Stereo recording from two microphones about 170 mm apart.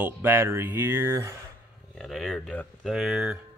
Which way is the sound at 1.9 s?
Centre (ahead or behind).